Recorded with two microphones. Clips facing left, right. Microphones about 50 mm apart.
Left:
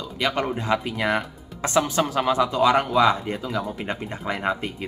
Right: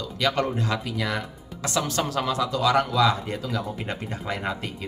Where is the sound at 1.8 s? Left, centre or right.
Centre.